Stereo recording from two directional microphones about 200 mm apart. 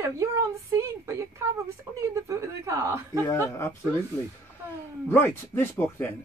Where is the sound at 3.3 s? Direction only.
15° left (ahead or behind).